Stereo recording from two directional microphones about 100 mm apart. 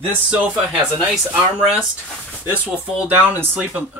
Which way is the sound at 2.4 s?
15° right (ahead or behind).